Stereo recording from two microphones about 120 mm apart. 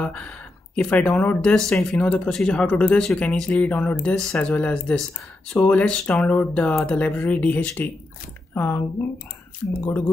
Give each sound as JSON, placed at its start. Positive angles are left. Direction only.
{"t": 0.0, "sound": "speech", "side_deg": 10}